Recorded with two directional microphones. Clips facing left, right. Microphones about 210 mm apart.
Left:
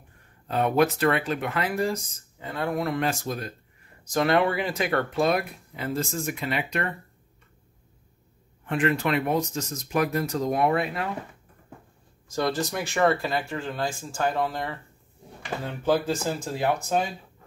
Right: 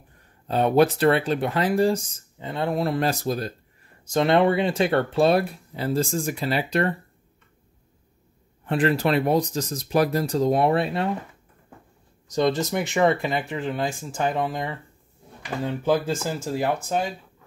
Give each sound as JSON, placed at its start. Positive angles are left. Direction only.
{"t": 0.5, "sound": "speech", "side_deg": -30}
{"t": 4.0, "sound": "speech", "side_deg": -25}
{"t": 8.6, "sound": "speech", "side_deg": -35}
{"t": 12.3, "sound": "speech", "side_deg": -20}
{"t": 16.5, "sound": "speech", "side_deg": 0}